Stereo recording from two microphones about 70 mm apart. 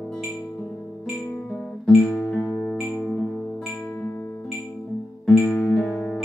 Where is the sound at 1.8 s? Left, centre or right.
Centre.